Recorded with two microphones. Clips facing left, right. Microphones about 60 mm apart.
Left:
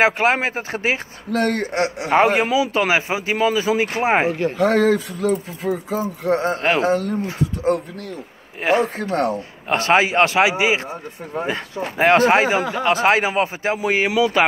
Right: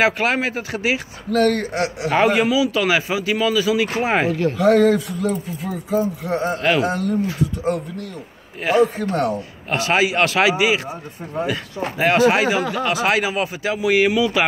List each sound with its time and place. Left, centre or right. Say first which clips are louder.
0.0 s speech: left 1 dB; left
1.3 s speech: right 2 dB; left
4.6 s speech: right 2 dB; left
14.1 s speech: left 1 dB; left